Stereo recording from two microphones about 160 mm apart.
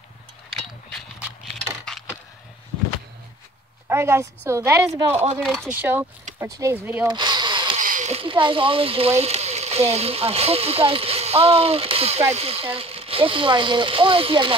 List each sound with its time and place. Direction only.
3.9 s a woman's voice: 15° right (ahead or behind)
5.4 s speech: centre (ahead or behind)
5.7 s speech: 10° right (ahead or behind)
7.1 s power tool: 25° right (ahead or behind)
7.8 s a sound: 55° right (ahead or behind)
8.1 s speech: 35° right (ahead or behind)